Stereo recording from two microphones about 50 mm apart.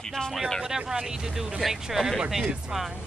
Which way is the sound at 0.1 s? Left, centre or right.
Centre.